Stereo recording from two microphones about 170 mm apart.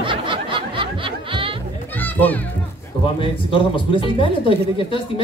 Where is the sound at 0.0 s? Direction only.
30° right (ahead or behind).